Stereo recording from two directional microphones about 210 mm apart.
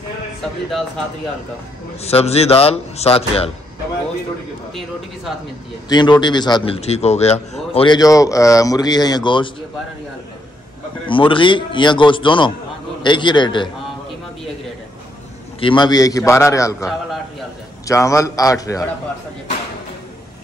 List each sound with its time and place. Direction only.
0.4 s speech: centre (ahead or behind)
2.0 s a man's voice: 30° left (ahead or behind)
5.9 s a man's voice: 20° left (ahead or behind)
11.1 s a man's voice: 25° left (ahead or behind)
15.6 s a man's voice: 20° left (ahead or behind)